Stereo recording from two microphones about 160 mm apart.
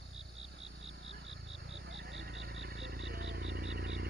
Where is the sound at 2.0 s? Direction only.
85° right.